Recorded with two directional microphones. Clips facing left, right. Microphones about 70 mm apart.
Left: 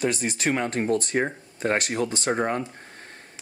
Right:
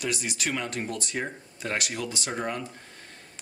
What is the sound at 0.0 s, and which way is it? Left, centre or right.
Speech, left.